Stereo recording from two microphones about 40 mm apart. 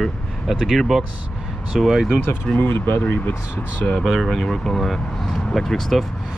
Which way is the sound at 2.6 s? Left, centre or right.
Left.